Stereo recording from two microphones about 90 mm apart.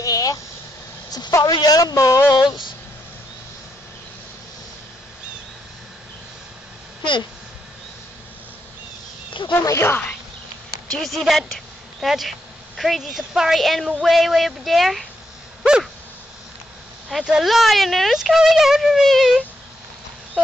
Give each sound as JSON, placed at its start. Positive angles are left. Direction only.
{"t": 0.0, "sound": "vehicle", "side_deg": 40}
{"t": 1.4, "sound": "speech", "side_deg": 50}
{"t": 9.5, "sound": "speech", "side_deg": 30}
{"t": 10.9, "sound": "speech", "side_deg": 5}
{"t": 15.6, "sound": "a sound", "side_deg": -10}
{"t": 17.1, "sound": "speech", "side_deg": -5}